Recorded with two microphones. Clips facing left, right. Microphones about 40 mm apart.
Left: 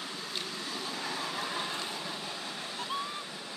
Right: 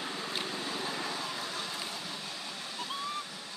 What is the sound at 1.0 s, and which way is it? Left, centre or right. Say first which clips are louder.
Vehicle: left 1 dB; centre.